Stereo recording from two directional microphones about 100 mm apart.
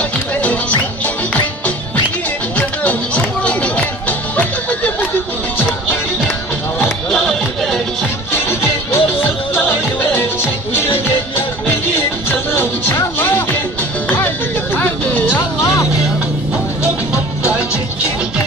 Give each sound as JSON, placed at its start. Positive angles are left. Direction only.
{"t": 0.4, "sound": "music", "side_deg": 15}
{"t": 2.5, "sound": "music", "side_deg": 15}
{"t": 7.1, "sound": "music", "side_deg": 5}
{"t": 8.5, "sound": "music", "side_deg": 25}
{"t": 12.3, "sound": "music", "side_deg": 20}
{"t": 17.4, "sound": "music", "side_deg": -10}